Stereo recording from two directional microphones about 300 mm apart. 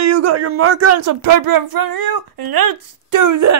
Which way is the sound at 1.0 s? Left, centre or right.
Right.